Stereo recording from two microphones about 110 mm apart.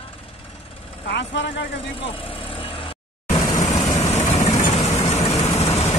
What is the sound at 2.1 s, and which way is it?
Vehicle, 55° left (ahead or behind).